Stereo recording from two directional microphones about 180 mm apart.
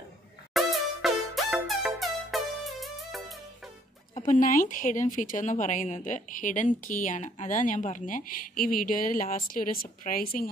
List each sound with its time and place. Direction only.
0.5 s music: centre (ahead or behind)
4.2 s speech: 45° left (ahead or behind)